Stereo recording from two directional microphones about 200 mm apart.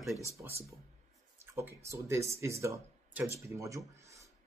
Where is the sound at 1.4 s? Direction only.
10° right (ahead or behind).